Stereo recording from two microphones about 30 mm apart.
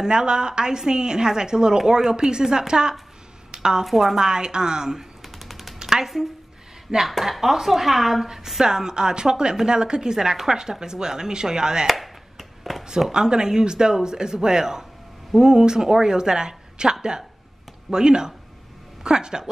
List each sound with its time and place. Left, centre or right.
0.0 s a woman's voice: right
3.5 s a sound: right
3.8 s speech: centre
4.1 s a woman's voice: right
5.2 s music: centre
5.8 s a sound: right
7.0 s speech: centre
8.5 s a woman's voice: right
11.9 s a sound: centre
13.1 s a woman's voice: right
17.9 s a woman's voice: right